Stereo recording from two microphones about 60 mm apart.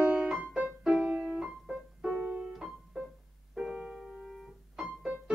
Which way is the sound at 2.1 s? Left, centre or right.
Right.